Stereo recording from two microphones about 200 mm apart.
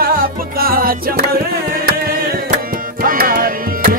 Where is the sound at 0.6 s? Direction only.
45° right (ahead or behind).